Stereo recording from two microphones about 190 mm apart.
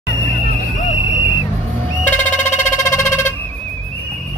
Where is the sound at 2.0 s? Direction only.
10° left (ahead or behind).